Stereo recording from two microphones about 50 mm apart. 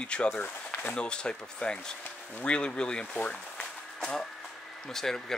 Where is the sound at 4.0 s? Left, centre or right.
Centre.